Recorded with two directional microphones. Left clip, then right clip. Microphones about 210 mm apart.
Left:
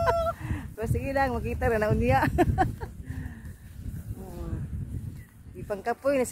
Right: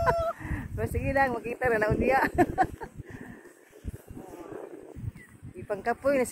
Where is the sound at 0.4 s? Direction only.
15° right (ahead or behind).